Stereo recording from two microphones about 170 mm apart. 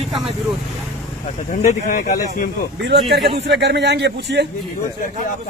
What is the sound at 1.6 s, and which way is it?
Speech, 45° left (ahead or behind).